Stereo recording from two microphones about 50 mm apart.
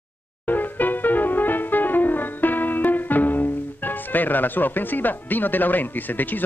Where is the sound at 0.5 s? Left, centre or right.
Left.